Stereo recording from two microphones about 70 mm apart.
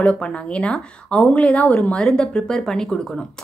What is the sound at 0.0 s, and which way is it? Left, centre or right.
A woman's voice, centre.